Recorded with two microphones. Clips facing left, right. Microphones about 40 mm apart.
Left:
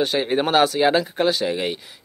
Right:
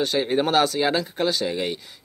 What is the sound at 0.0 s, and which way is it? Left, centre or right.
Speech, centre.